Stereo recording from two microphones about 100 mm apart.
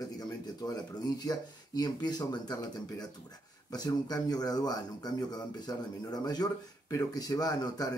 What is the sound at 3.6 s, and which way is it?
Speech, 40° left (ahead or behind).